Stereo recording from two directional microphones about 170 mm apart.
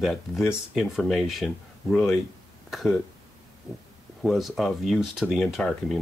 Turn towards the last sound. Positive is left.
turn(degrees=0)  # may be behind; listen again after turning